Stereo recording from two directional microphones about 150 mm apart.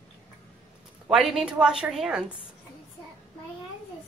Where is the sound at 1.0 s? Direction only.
5° right (ahead or behind).